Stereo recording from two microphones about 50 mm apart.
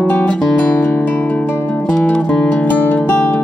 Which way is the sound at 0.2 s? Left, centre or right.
Centre.